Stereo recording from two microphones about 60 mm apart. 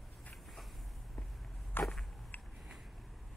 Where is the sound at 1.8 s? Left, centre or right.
Left.